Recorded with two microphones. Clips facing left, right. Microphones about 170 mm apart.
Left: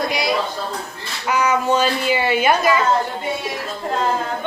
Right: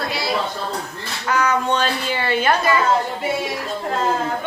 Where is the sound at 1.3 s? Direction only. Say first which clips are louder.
Left 2 dB; 10° left (ahead or behind).